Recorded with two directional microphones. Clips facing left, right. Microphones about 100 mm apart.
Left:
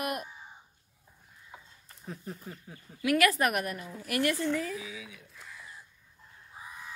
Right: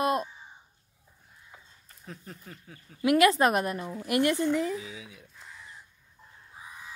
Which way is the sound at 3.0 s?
25° right (ahead or behind).